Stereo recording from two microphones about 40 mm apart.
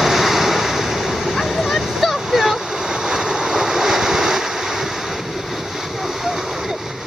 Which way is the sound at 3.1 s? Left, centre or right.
Centre.